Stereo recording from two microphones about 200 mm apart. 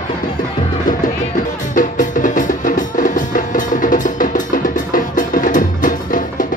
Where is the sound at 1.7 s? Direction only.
40° left (ahead or behind).